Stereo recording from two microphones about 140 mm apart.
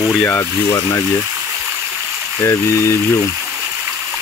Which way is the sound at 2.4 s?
20° left (ahead or behind).